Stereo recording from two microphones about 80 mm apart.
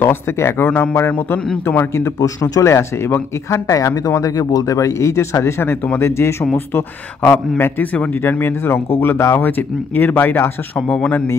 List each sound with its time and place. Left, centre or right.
0.0 s a man's voice: left
2.1 s speech: left
3.6 s a man's voice: left
10.9 s speech: centre